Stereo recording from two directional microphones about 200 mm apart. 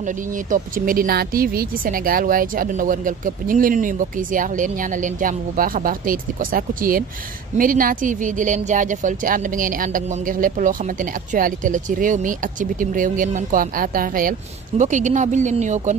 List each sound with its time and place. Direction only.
0.0 s speech: 40° right (ahead or behind)